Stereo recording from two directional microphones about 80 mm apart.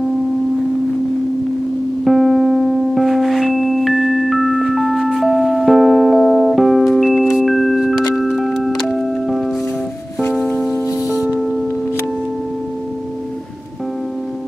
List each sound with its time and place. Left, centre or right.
2.0 s music: centre
10.7 s music: left